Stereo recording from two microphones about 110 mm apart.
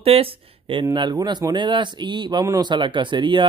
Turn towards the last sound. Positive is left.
turn(degrees=-50)  # may be behind; listen again after turning